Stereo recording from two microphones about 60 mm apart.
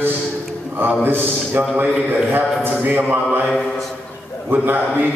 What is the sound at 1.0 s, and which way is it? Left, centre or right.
Speech, right.